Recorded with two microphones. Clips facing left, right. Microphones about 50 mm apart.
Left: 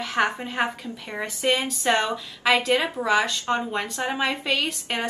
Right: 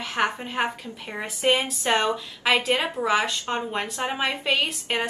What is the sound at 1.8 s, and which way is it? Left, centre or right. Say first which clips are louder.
A woman's voice: even; centre.